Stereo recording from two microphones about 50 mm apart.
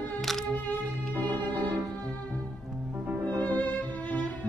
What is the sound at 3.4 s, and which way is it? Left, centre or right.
Music, left.